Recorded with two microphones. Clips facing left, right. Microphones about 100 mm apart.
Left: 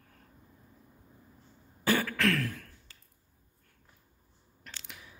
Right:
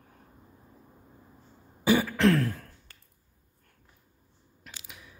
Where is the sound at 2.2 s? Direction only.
30° right (ahead or behind).